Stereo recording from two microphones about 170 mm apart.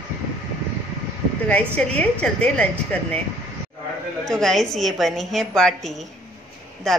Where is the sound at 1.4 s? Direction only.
10° left (ahead or behind).